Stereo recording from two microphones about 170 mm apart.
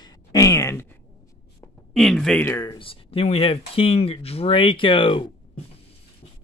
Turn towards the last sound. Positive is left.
turn(degrees=30)  # may be behind; listen again after turning